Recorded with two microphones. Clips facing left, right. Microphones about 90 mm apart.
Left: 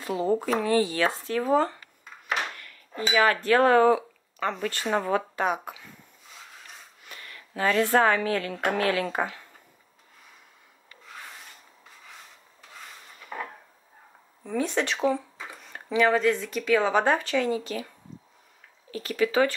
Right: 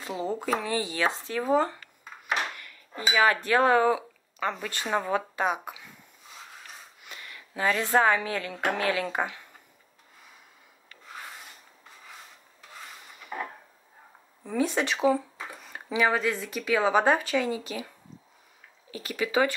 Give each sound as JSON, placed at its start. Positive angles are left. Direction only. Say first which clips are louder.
{"t": 0.1, "sound": "speech", "louder": "left 4 dB", "side_deg": -15}
{"t": 2.9, "sound": "speech", "louder": "left 1 dB", "side_deg": -5}
{"t": 7.0, "sound": "speech", "louder": "even", "side_deg": -20}
{"t": 13.2, "sound": "a sound", "louder": "right 1 dB", "side_deg": -10}
{"t": 14.4, "sound": "speech", "louder": "even", "side_deg": -5}